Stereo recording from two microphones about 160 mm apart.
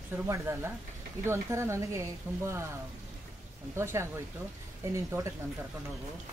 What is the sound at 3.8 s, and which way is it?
A woman's voice, 15° right (ahead or behind).